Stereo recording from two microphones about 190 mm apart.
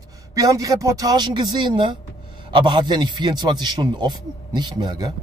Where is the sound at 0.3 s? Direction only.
20° right (ahead or behind).